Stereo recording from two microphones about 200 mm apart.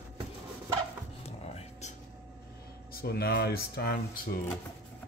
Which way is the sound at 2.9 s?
50° left (ahead or behind).